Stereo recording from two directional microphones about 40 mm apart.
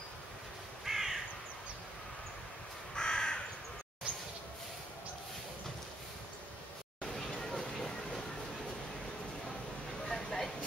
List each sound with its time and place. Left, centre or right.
0.8 s crow: centre
2.9 s crow: centre
7.2 s a sound: centre
10.0 s vehicle: centre